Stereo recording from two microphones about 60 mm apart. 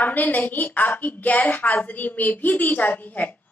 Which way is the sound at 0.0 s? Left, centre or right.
Left.